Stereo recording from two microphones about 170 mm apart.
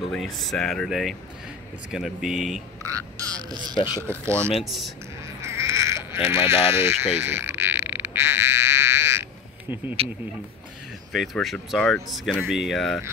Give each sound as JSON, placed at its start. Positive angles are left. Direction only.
{"t": 0.1, "sound": "speech", "side_deg": 0}
{"t": 2.8, "sound": "speech", "side_deg": -20}
{"t": 3.7, "sound": "speech", "side_deg": 30}
{"t": 4.0, "sound": "speech", "side_deg": 10}
{"t": 5.4, "sound": "bleat", "side_deg": -15}
{"t": 7.2, "sound": "frog", "side_deg": -15}
{"t": 11.1, "sound": "speech", "side_deg": 0}